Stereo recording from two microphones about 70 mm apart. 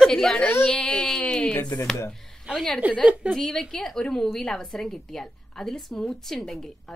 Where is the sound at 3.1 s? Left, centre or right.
Centre.